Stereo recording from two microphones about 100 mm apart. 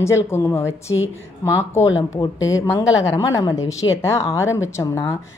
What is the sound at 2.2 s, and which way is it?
A woman's voice, 35° left (ahead or behind).